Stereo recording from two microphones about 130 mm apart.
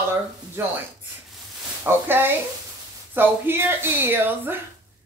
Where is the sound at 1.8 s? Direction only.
15° right (ahead or behind).